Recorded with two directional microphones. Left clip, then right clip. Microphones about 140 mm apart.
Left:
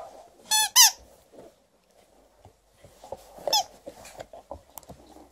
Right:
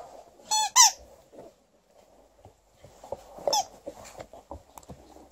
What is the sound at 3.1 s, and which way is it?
Cat, 20° left (ahead or behind).